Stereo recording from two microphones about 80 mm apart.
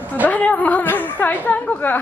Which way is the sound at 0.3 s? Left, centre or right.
Centre.